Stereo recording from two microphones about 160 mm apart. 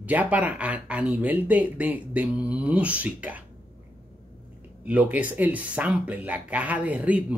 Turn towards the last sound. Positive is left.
turn(degrees=-10)  # may be behind; listen again after turning